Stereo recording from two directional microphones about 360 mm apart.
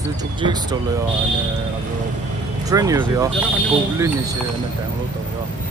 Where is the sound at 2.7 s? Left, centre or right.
Centre.